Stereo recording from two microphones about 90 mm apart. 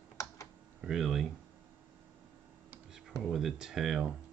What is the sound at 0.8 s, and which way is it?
Speech, 5° right (ahead or behind).